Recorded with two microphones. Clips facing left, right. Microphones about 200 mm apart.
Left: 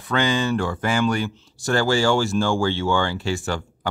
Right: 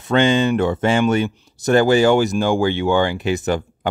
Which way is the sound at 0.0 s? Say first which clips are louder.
Right 6 dB; 25° right (ahead or behind).